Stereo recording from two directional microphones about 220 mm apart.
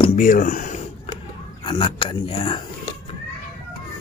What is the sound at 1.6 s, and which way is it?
Speech, 20° left (ahead or behind).